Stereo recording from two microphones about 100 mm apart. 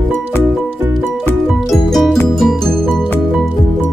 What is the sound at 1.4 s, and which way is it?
Music, centre (ahead or behind).